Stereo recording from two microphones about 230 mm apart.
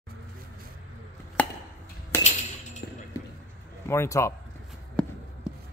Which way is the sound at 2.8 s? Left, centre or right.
Left.